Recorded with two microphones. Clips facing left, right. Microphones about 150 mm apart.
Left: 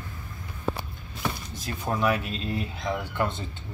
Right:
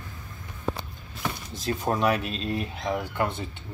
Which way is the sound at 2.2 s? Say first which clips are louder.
Right 1 dB; 15° left (ahead or behind).